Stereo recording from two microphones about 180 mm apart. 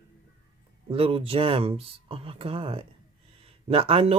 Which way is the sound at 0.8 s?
30° right (ahead or behind).